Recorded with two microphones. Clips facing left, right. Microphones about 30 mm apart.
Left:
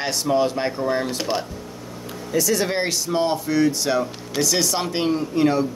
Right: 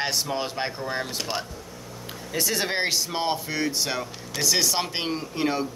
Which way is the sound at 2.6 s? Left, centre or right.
Centre.